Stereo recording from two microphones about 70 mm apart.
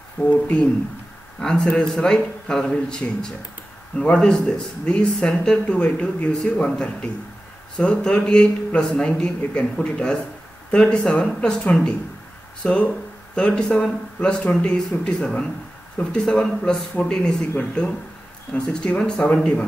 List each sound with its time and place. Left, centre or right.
0.2 s speech: centre